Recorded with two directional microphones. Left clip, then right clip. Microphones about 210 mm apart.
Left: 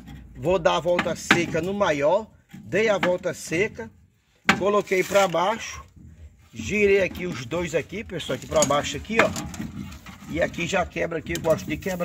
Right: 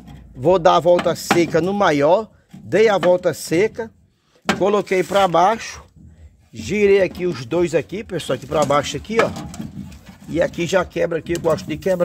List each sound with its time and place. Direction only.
0.4 s speech: 50° right (ahead or behind)
10.3 s speech: 55° right (ahead or behind)